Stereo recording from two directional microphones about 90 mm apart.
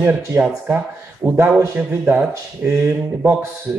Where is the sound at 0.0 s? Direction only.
20° right (ahead or behind).